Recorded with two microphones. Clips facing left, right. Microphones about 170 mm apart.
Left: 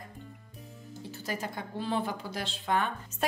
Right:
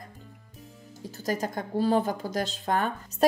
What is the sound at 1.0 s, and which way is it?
A woman's voice, 40° right (ahead or behind).